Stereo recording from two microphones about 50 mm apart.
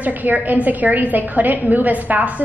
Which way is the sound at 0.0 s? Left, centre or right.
Right.